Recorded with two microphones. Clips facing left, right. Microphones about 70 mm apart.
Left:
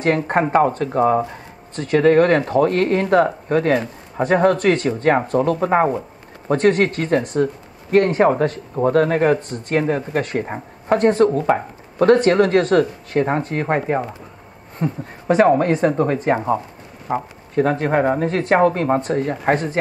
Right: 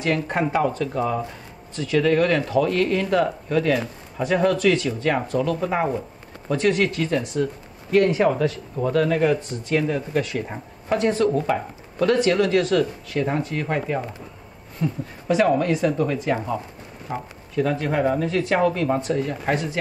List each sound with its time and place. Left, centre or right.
0.0 s speech: left